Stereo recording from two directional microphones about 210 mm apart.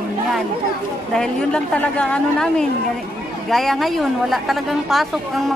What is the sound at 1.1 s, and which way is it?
Speech, 5° left (ahead or behind).